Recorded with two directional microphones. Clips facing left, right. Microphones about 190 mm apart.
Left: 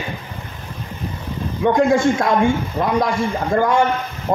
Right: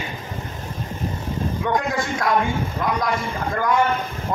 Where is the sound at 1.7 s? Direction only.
25° left (ahead or behind).